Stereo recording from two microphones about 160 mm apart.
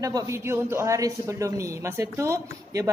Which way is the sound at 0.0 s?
20° right (ahead or behind).